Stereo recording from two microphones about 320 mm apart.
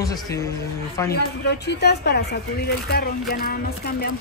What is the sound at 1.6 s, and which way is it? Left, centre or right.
Speech, left.